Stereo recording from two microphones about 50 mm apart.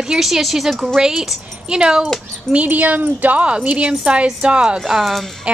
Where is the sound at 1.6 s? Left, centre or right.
Centre.